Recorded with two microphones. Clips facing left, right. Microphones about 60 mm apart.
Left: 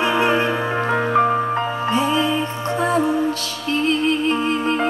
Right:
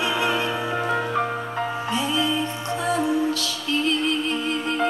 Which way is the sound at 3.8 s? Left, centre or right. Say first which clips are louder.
Left 6 dB; left.